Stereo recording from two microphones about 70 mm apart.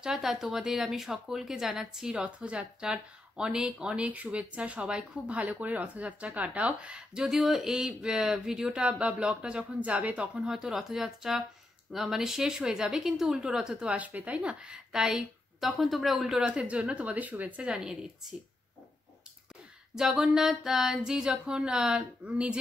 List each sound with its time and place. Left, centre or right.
0.0 s speech: centre
7.2 s speech: centre
16.4 s speech: centre
20.0 s speech: centre